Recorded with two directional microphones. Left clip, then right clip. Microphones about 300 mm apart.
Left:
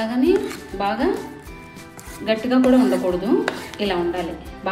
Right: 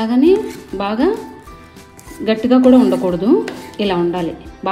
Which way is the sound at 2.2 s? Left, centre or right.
Centre.